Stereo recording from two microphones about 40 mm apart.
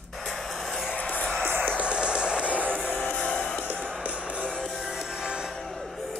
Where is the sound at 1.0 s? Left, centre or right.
Left.